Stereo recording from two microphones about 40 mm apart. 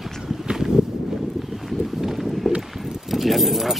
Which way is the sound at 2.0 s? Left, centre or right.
Centre.